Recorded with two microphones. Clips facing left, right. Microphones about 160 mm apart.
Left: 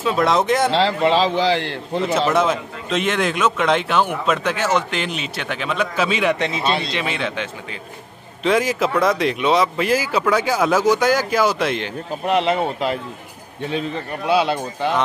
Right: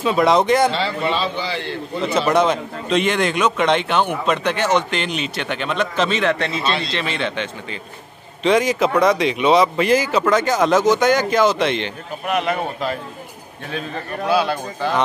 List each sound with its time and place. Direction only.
0.0 s a man's voice: centre (ahead or behind)
0.7 s a man's voice: 90° left
2.1 s a man's voice: 5° left (ahead or behind)
8.5 s a man's voice: 5° left (ahead or behind)
12.3 s a man's voice: 25° left (ahead or behind)